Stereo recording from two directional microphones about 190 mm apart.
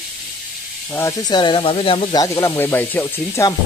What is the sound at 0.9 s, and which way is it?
Speech, 20° left (ahead or behind).